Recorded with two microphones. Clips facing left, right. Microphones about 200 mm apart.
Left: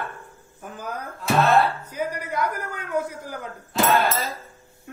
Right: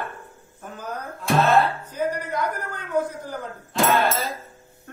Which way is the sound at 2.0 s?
10° left (ahead or behind).